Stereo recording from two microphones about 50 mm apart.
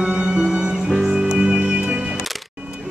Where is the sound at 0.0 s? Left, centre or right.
Centre.